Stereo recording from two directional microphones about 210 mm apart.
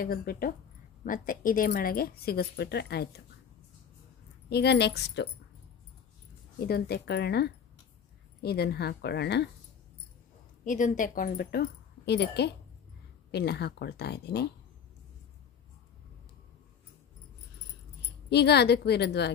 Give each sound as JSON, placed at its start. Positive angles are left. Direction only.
{"t": 0.0, "sound": "speech", "side_deg": 45}
{"t": 4.5, "sound": "speech", "side_deg": 50}
{"t": 6.6, "sound": "speech", "side_deg": 50}
{"t": 10.6, "sound": "speech", "side_deg": 35}
{"t": 18.3, "sound": "speech", "side_deg": 50}